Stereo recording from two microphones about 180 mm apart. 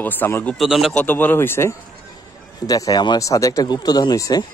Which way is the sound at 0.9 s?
10° left (ahead or behind).